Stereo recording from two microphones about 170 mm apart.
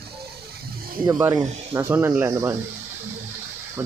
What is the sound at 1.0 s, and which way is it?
Speech, 20° right (ahead or behind).